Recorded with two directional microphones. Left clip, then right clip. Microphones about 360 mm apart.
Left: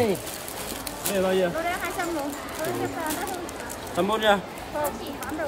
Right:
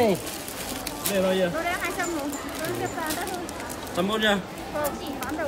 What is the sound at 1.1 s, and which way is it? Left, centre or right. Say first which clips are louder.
Speech: even; centre.